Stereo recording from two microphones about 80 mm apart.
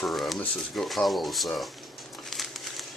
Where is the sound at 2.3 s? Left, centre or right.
Centre.